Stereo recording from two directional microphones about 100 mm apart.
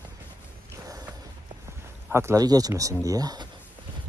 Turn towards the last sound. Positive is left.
turn(degrees=-40)  # may be behind; listen again after turning